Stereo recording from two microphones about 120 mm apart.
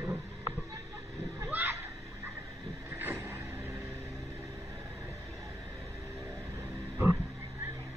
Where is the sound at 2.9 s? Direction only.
15° right (ahead or behind).